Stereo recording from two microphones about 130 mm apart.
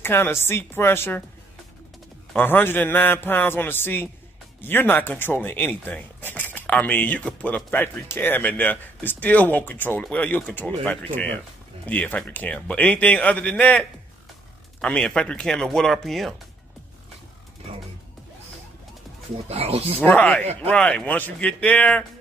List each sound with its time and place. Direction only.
0.0 s speech: 15° left (ahead or behind)
2.3 s speech: 15° left (ahead or behind)
19.5 s speech: 50° right (ahead or behind)
20.0 s speech: 15° left (ahead or behind)